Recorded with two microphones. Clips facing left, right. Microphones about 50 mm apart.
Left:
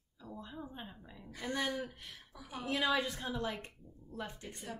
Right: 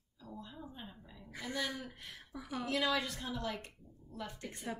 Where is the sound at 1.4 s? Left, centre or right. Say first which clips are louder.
Left 3 dB; left.